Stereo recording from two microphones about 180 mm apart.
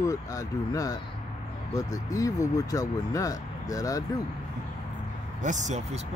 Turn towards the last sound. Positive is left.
turn(degrees=-40)  # may be behind; listen again after turning